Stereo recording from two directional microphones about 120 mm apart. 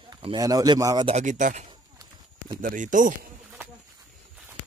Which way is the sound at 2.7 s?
90° right.